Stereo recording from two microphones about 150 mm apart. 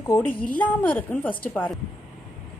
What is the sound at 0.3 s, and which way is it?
Speech, 70° left (ahead or behind).